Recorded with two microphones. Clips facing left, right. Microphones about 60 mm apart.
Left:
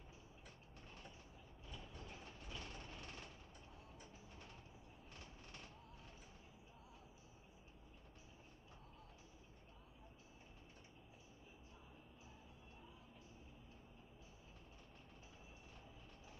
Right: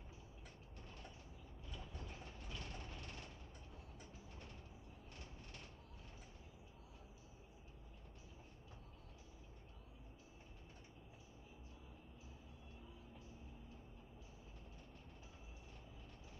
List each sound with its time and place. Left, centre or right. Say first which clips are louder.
2.5 s vehicle: even; centre